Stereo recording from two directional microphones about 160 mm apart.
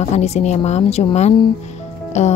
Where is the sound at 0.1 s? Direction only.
45° left (ahead or behind).